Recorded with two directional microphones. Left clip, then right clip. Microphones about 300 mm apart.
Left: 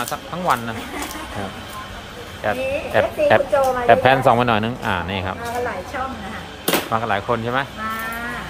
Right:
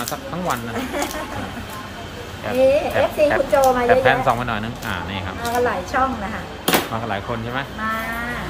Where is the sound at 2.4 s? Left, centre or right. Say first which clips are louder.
Right 6 dB; left.